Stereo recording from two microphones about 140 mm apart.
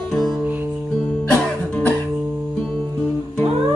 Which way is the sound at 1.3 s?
10° left (ahead or behind).